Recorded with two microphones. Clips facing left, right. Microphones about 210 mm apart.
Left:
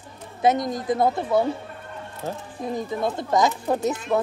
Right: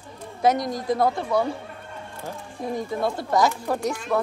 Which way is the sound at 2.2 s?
20° left (ahead or behind).